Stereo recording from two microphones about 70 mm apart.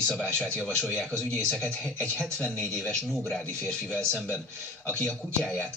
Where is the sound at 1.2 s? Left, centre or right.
Centre.